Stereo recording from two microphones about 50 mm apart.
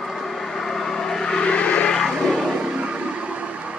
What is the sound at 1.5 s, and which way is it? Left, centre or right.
Vehicle, left.